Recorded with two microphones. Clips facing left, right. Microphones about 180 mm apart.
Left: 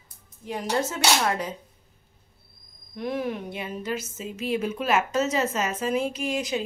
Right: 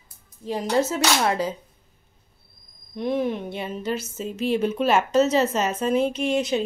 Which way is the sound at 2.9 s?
25° right (ahead or behind).